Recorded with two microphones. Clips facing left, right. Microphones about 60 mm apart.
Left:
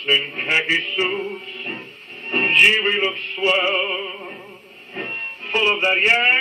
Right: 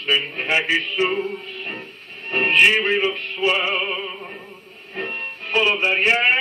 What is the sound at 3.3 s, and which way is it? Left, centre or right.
Music, left.